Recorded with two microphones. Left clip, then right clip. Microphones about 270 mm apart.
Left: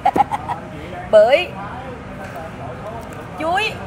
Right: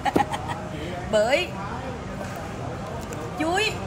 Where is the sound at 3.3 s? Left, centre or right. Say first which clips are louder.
Left 5 dB; centre.